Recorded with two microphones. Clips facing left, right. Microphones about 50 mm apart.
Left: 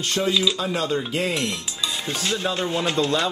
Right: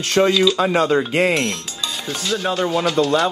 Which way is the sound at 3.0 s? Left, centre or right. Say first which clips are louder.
Right 5 dB; right.